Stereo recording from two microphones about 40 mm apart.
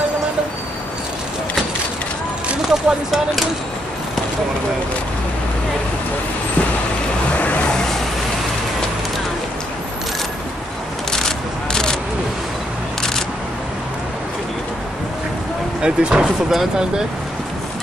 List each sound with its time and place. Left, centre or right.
2.7 s speech: centre
7.3 s vehicle: left
11.1 s a sound: centre
15.8 s speech: right